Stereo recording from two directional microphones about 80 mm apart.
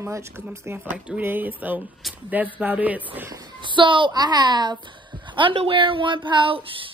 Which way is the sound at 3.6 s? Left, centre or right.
Right.